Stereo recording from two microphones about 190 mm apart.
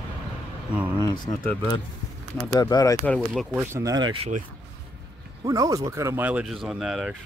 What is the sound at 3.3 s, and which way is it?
Speech, 5° right (ahead or behind).